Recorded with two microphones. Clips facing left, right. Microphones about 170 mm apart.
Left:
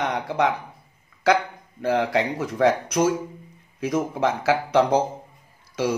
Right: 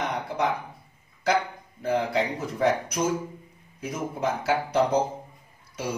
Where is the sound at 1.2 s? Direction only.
90° left.